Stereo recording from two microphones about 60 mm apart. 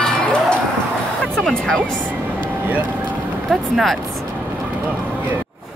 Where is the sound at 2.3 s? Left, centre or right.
Right.